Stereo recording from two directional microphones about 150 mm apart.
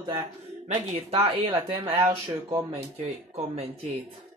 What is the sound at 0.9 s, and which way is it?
Speech, 40° right (ahead or behind).